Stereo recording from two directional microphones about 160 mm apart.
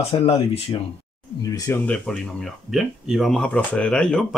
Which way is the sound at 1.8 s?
5° left (ahead or behind).